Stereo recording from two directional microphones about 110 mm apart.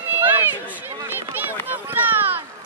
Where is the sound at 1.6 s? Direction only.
15° right (ahead or behind).